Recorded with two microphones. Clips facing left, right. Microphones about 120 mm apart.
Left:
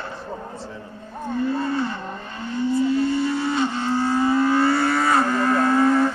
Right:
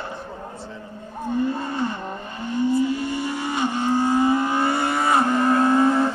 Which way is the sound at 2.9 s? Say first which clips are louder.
Left 5 dB; 15° right (ahead or behind).